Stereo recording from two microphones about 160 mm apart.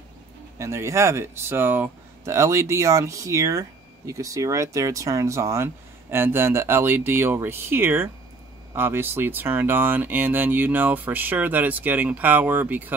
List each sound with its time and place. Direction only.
0.6 s speech: 20° right (ahead or behind)